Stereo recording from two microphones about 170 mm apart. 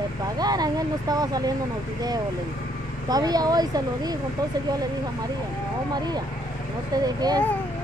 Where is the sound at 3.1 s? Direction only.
20° right (ahead or behind).